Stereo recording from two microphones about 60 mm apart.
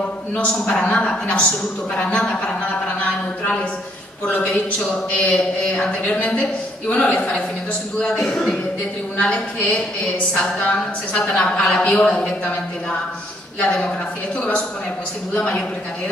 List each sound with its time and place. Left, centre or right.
0.7 s a woman's voice: left
4.3 s speech: left
9.2 s a woman's voice: centre
13.6 s a woman's voice: centre
15.3 s speech: left